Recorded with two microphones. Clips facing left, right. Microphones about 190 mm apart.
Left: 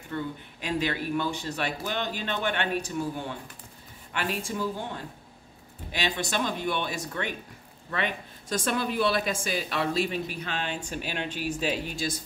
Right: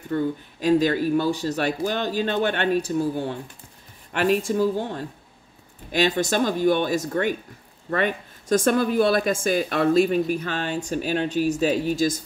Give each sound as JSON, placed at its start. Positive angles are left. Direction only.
{"t": 0.1, "sound": "speech", "side_deg": -40}
{"t": 4.1, "sound": "speech", "side_deg": -45}